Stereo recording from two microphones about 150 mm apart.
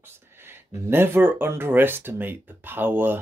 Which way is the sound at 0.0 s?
15° right (ahead or behind).